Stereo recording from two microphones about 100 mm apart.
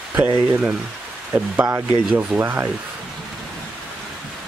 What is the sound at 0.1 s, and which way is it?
Speech, 20° right (ahead or behind).